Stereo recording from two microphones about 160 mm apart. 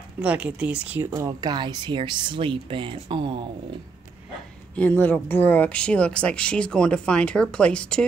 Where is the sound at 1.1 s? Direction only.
25° right (ahead or behind).